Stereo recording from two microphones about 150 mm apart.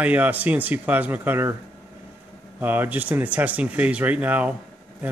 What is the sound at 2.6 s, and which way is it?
Speech, 10° right (ahead or behind).